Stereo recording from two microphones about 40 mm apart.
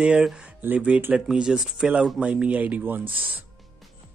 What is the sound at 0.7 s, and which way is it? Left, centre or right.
Speech, right.